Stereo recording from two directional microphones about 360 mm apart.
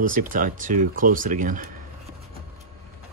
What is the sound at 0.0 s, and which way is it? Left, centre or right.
Speech, right.